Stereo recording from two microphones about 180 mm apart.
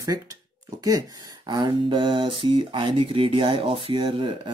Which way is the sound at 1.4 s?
25° right (ahead or behind).